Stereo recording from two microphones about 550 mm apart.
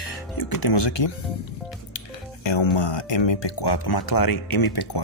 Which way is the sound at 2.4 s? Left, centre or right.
Left.